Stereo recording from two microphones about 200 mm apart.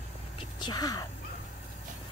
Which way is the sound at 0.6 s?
20° left (ahead or behind).